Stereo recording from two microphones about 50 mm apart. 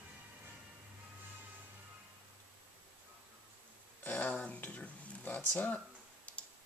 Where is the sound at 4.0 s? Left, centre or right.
Left.